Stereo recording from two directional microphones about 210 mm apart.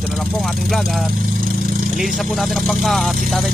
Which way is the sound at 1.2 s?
40° right (ahead or behind).